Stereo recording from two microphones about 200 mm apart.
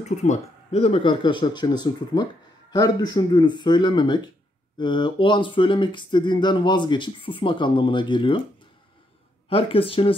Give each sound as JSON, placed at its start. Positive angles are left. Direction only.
{"t": 0.0, "sound": "speech", "side_deg": 35}
{"t": 9.5, "sound": "speech", "side_deg": 25}